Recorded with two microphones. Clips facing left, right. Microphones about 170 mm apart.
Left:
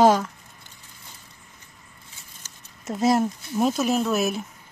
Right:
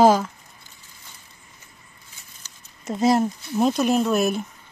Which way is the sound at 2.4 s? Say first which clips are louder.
Left 1 dB; 45° left (ahead or behind).